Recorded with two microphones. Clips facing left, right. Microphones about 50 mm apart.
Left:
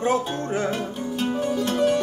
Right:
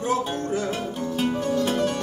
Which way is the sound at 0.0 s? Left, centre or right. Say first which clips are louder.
Left 2 dB; left.